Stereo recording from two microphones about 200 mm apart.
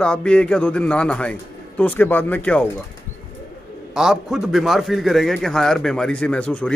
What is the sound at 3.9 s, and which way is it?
Speech, centre (ahead or behind).